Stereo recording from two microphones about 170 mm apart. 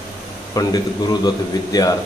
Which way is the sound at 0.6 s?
20° left (ahead or behind).